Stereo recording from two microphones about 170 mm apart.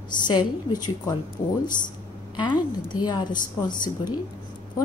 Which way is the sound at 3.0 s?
25° left (ahead or behind).